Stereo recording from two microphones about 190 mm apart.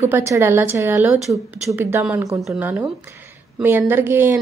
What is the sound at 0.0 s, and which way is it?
A woman's voice, 15° right (ahead or behind).